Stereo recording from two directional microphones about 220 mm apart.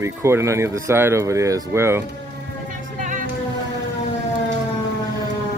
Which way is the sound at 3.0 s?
35° right (ahead or behind).